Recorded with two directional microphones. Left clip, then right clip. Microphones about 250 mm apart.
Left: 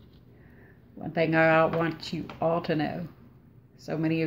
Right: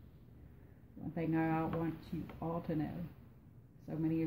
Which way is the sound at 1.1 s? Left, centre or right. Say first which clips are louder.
Left 15 dB; centre.